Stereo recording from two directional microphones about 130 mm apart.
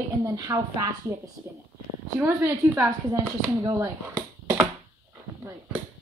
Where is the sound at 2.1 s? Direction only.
20° right (ahead or behind).